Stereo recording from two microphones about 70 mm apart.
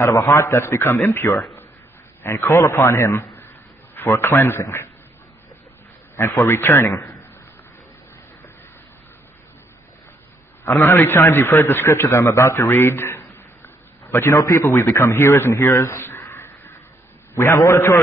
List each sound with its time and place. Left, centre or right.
0.0 s a man's voice: left
3.2 s a sound: left
3.9 s a man's voice: left
6.2 s a man's voice: left
6.9 s a man's voice: left
10.7 s a man's voice: left
14.1 s a man's voice: left
14.7 s a man's voice: left
15.7 s a man's voice: left
16.0 s crow: left
17.3 s a man's voice: left